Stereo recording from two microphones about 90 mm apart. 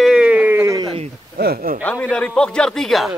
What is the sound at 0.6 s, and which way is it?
Speech, 40° right (ahead or behind).